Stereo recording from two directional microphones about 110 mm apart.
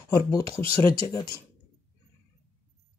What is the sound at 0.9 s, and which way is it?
Speech, 30° left (ahead or behind).